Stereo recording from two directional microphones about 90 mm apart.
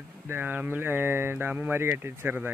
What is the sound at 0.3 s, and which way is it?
Speech, 20° right (ahead or behind).